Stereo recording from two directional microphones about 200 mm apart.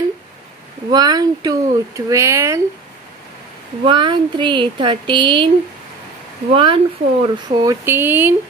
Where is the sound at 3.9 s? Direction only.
25° right (ahead or behind).